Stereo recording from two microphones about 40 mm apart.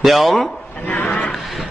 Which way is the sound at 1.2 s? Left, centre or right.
Centre.